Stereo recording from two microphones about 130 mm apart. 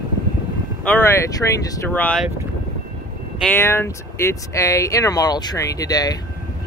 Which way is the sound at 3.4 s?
15° left (ahead or behind).